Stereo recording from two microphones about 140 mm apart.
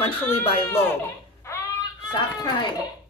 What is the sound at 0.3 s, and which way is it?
Speech, 40° left (ahead or behind).